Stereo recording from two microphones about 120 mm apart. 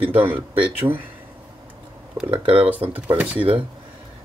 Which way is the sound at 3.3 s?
45° right (ahead or behind).